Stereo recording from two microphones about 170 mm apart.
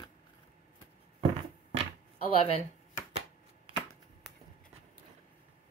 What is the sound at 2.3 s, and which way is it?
Speech, 35° left (ahead or behind).